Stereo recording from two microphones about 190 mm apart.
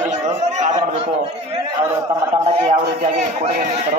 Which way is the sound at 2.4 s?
35° right (ahead or behind).